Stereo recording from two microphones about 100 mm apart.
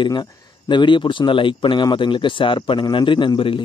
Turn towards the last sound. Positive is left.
turn(degrees=50)  # may be behind; listen again after turning